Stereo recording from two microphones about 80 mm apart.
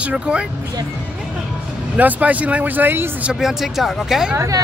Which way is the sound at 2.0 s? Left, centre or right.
Centre.